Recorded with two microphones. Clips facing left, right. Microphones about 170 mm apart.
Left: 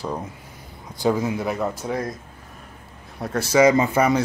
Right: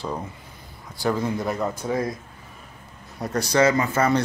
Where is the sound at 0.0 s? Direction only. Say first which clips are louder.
Left 1 dB; 10° left (ahead or behind).